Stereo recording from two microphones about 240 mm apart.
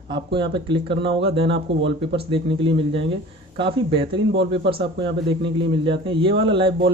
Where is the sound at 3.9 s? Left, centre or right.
Right.